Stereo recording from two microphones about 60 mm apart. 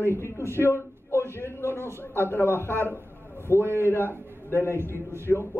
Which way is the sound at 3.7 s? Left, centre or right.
Right.